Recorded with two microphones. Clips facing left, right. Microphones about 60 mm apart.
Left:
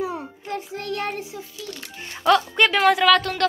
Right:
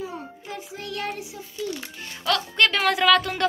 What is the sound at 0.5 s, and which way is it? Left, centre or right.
Child singing, left.